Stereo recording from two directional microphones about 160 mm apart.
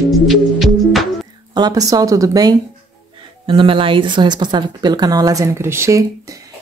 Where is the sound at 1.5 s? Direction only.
25° right (ahead or behind).